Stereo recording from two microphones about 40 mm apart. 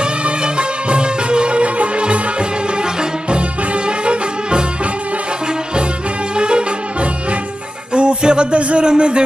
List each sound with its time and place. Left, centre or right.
0.6 s music: right
4.0 s music: right
6.3 s music: right
7.9 s music: right
8.8 s speech: right